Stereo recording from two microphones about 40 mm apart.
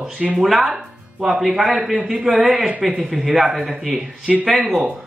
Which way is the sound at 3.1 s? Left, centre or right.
Right.